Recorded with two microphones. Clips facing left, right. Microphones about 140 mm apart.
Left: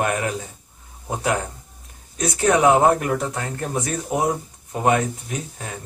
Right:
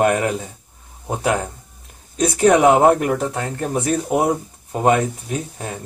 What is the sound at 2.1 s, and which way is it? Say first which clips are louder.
Speech: right 5 dB; 30° right (ahead or behind).